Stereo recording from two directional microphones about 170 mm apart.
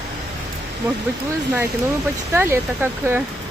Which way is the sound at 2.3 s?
15° right (ahead or behind).